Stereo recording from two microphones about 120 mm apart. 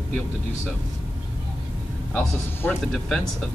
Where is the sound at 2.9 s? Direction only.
5° left (ahead or behind).